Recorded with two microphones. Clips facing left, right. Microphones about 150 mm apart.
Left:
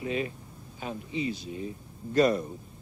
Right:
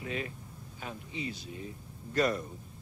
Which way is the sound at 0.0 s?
20° left (ahead or behind).